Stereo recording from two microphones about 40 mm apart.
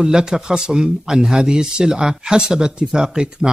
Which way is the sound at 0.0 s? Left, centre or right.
Centre.